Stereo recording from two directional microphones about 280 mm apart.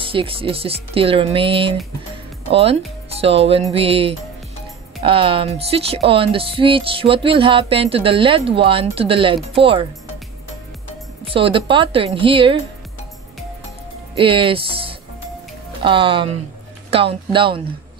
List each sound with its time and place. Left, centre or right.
0.0 s speech: centre
11.2 s speech: centre
14.1 s speech: centre